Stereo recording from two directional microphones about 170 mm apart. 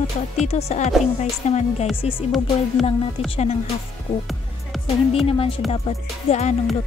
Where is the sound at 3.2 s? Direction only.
40° left (ahead or behind).